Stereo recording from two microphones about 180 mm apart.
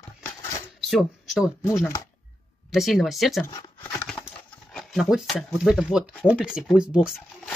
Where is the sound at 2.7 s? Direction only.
Centre (ahead or behind).